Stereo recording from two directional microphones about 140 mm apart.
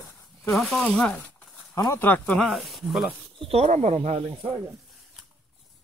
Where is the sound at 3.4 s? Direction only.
45° right (ahead or behind).